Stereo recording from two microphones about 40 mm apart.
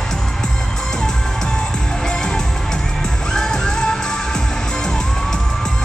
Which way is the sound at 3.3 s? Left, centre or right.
Centre.